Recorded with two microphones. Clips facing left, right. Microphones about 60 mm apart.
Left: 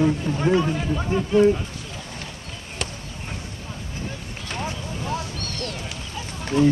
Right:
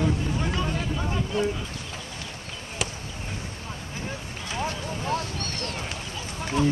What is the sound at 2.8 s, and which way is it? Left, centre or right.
Basketball bounce, centre.